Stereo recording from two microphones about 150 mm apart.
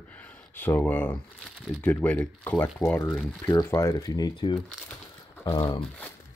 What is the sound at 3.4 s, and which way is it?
Speech, 20° left (ahead or behind).